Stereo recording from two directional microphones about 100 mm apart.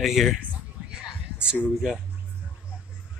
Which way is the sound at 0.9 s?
10° right (ahead or behind).